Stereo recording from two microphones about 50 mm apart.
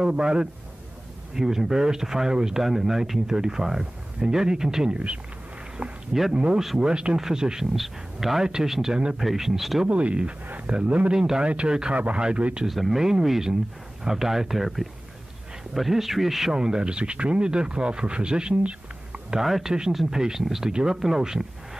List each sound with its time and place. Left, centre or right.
0.0 s speech: centre
4.9 s speech: right
6.3 s speech: centre
9.8 s speech: right
11.1 s speech: centre
12.6 s speech: centre
16.5 s speech: centre
19.3 s speech: centre